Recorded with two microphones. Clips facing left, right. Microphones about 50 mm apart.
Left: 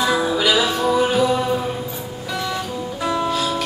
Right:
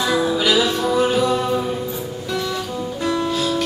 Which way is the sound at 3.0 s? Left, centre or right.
Centre.